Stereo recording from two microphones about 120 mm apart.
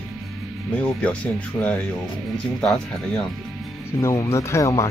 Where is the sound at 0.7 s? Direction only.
10° left (ahead or behind).